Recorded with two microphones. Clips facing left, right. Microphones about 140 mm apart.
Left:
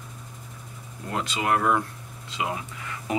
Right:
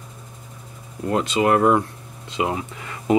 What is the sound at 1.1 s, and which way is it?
Speech, 25° right (ahead or behind).